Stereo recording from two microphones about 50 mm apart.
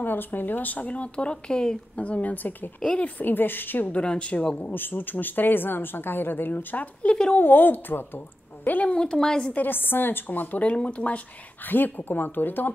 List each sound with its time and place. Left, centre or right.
0.0 s speech: left; by 1.8 s centre
2.0 s speech: left
3.9 s speech: left
4.6 s speech: left
7.3 s speech: left
8.9 s a woman's voice: centre
9.6 s speech: left
10.7 s speech: left
11.7 s speech: left